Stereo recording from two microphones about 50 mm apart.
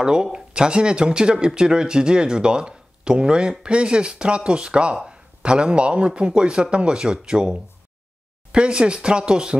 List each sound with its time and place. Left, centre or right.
0.0 s a man's voice: centre